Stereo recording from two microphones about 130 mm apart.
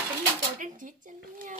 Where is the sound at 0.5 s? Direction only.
90° right.